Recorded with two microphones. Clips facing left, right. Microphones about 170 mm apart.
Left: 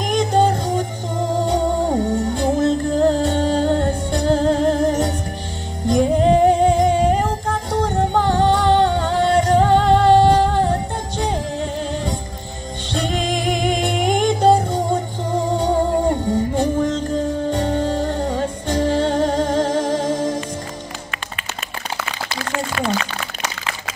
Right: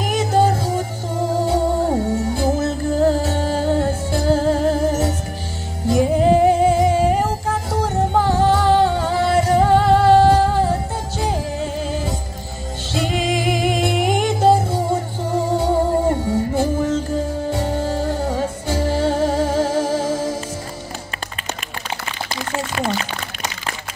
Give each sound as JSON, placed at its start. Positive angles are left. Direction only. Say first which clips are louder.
{"t": 0.0, "sound": "music", "louder": "left 1 dB", "side_deg": -5}